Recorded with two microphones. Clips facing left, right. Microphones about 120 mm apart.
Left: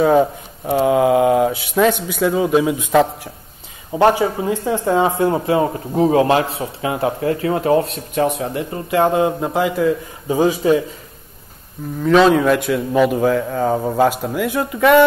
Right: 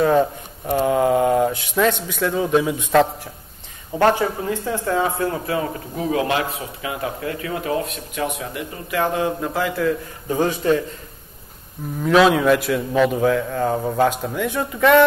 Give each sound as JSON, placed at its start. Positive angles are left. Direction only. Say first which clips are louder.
{"t": 0.0, "sound": "speech", "louder": "left 3 dB", "side_deg": 10}
{"t": 3.9, "sound": "speech", "louder": "left 3 dB", "side_deg": 15}
{"t": 12.0, "sound": "a man's voice", "louder": "left 3 dB", "side_deg": 0}